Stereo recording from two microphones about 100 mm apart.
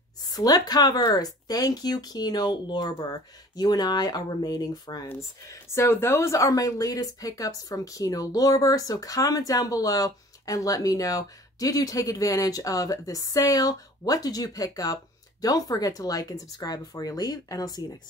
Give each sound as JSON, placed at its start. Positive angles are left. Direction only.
{"t": 0.3, "sound": "speech", "side_deg": 40}
{"t": 5.0, "sound": "speech", "side_deg": 25}